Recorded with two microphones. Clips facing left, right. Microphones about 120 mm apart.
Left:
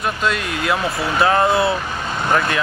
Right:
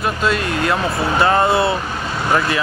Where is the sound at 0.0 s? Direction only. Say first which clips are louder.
Right 2 dB; centre (ahead or behind).